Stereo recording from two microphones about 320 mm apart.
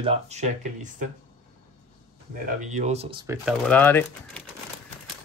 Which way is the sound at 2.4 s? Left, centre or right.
Right.